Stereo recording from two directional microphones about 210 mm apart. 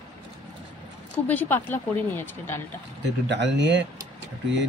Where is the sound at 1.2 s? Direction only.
10° left (ahead or behind).